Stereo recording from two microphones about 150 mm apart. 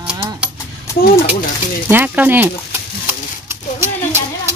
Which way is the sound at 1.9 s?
15° right (ahead or behind).